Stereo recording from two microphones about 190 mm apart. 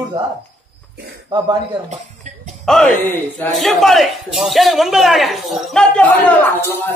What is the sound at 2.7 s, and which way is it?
A man's voice, 5° left (ahead or behind).